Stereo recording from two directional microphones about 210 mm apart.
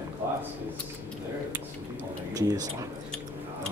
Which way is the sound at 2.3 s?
15° right (ahead or behind).